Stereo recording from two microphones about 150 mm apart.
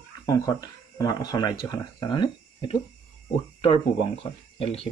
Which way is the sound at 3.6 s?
40° left (ahead or behind).